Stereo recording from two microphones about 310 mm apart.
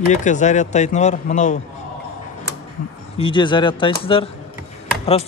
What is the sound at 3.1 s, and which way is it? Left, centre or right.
A man's voice, centre.